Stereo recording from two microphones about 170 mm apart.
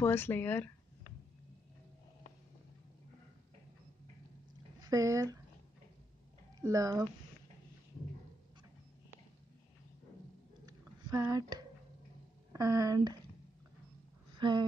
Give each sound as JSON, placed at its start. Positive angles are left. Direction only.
{"t": 0.0, "sound": "speech", "side_deg": 15}
{"t": 4.7, "sound": "speech", "side_deg": -20}
{"t": 6.6, "sound": "speech", "side_deg": -20}
{"t": 10.6, "sound": "a sound", "side_deg": -20}
{"t": 12.5, "sound": "speech", "side_deg": -20}
{"t": 14.4, "sound": "a sound", "side_deg": -25}